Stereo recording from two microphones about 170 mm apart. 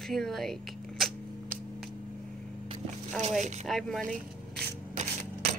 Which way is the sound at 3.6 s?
Centre (ahead or behind).